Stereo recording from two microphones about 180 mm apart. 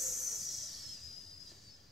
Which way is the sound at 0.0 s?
Centre (ahead or behind).